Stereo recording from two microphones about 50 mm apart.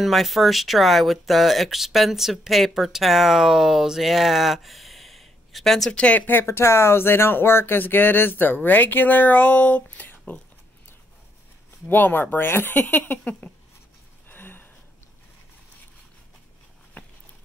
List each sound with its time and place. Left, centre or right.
0.0 s speech: centre
5.9 s speech: left
6.4 s speech: left
11.9 s speech: left
14.3 s a sound: left